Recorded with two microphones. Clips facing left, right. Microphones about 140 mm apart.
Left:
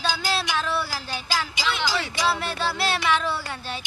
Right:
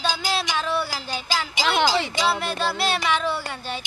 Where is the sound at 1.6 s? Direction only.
55° right (ahead or behind).